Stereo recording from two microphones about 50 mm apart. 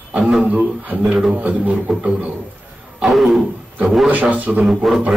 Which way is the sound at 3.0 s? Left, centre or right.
Centre.